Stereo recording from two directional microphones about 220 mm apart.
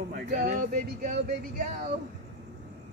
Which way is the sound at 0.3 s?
35° right (ahead or behind).